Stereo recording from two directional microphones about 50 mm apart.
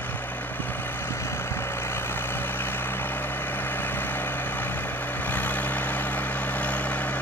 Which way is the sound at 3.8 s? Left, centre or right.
Left.